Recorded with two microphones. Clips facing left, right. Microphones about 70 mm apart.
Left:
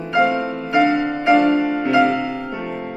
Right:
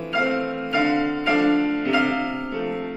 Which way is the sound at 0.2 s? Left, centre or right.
Left.